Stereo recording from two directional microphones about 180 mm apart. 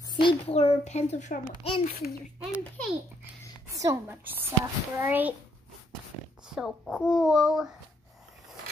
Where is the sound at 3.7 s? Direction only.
20° right (ahead or behind).